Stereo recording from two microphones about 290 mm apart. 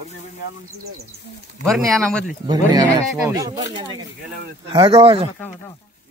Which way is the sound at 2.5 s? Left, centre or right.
Centre.